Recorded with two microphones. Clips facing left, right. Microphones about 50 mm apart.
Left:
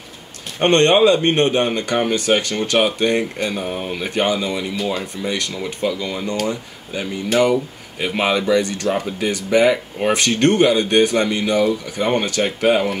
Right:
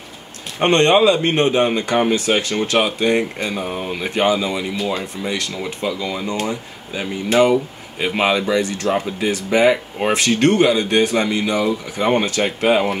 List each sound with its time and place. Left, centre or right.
0.6 s speech: centre
3.5 s speech: centre
4.1 s speech: centre